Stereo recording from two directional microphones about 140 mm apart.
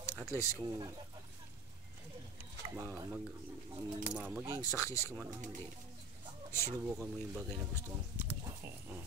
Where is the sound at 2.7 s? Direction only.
15° right (ahead or behind).